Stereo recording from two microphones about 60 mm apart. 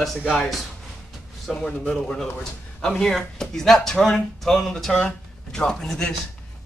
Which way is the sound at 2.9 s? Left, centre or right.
Centre.